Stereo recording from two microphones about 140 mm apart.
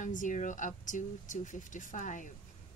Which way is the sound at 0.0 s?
65° left (ahead or behind).